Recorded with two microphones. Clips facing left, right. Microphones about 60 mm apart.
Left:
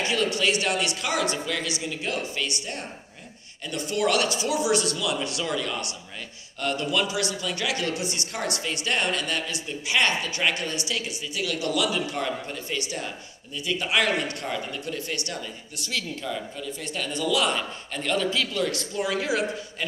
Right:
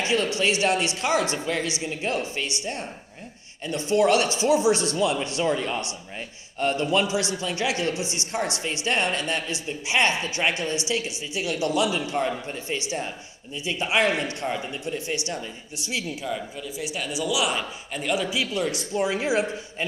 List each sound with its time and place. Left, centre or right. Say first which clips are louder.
0.0 s speech: right 1 dB; right